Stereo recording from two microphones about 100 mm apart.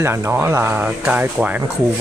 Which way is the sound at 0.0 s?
25° right (ahead or behind).